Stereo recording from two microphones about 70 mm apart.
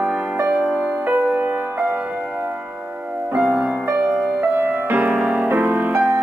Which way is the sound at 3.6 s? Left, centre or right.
Centre.